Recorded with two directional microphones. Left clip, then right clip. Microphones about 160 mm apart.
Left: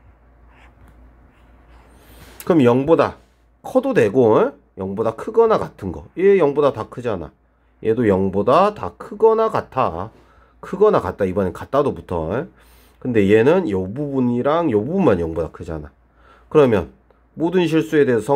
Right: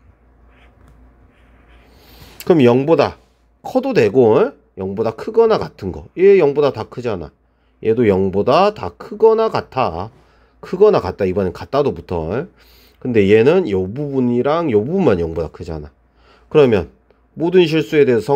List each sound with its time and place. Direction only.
2.4 s speech: 25° right (ahead or behind)
16.3 s a sound: 20° right (ahead or behind)
17.4 s speech: 20° right (ahead or behind)